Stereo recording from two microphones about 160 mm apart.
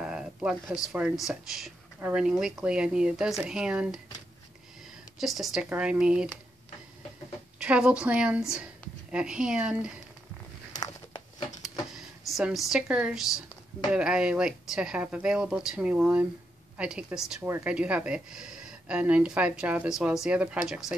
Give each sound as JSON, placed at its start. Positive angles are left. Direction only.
{"t": 0.0, "sound": "a sound", "side_deg": -5}
{"t": 0.9, "sound": "speech", "side_deg": -5}
{"t": 2.0, "sound": "speech", "side_deg": -15}
{"t": 2.2, "sound": "speech", "side_deg": -5}
{"t": 5.2, "sound": "speech", "side_deg": 0}
{"t": 7.5, "sound": "speech", "side_deg": -5}
{"t": 10.8, "sound": "a sound", "side_deg": 25}
{"t": 11.9, "sound": "speech", "side_deg": -5}
{"t": 17.4, "sound": "speech", "side_deg": -15}